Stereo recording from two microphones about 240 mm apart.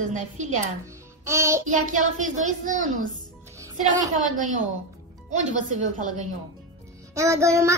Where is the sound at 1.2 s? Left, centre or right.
Centre.